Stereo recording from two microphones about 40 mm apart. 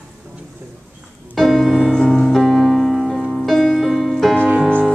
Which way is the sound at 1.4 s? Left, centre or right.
Centre.